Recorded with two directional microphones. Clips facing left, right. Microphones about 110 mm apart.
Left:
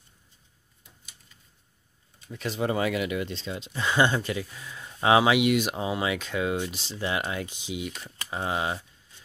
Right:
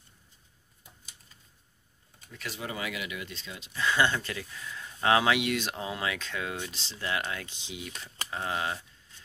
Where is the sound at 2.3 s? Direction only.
25° left (ahead or behind).